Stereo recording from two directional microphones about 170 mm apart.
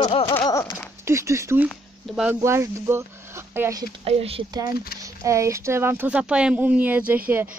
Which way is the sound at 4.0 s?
35° right (ahead or behind).